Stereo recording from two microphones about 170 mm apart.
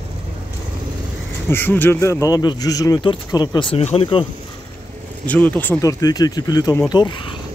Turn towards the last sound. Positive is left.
turn(degrees=25)  # may be behind; listen again after turning